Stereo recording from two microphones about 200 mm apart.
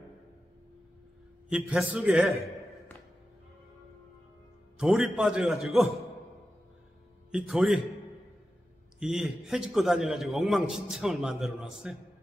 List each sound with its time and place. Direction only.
1.5 s a man's voice: 5° right (ahead or behind)
4.7 s a man's voice: centre (ahead or behind)
7.2 s a man's voice: 5° right (ahead or behind)
9.0 s a man's voice: centre (ahead or behind)